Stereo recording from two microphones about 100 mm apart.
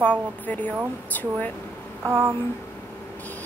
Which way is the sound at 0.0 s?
15° left (ahead or behind).